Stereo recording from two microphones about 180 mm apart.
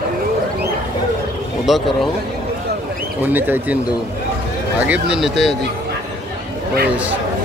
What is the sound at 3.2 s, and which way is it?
Speech, 10° right (ahead or behind).